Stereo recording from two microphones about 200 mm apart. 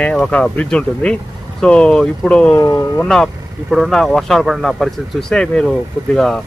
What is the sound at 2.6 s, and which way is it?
Speech, 15° left (ahead or behind).